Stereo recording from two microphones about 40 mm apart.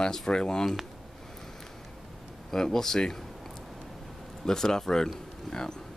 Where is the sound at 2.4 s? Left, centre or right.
Centre.